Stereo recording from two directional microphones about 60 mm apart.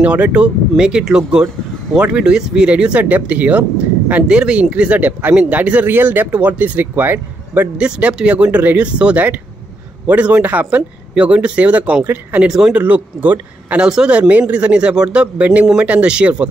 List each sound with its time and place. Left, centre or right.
0.0 s speech: right
7.7 s speech: centre
12.4 s speech: centre
12.7 s speech: right
13.8 s speech: centre
14.1 s speech: centre